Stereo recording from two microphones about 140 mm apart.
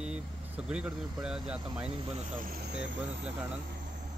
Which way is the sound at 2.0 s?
45° right (ahead or behind).